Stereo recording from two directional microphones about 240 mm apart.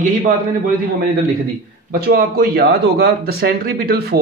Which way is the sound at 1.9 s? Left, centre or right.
Right.